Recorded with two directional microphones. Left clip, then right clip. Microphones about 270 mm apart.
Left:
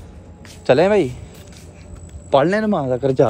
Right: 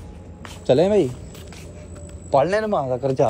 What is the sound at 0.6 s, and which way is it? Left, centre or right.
Speech, centre.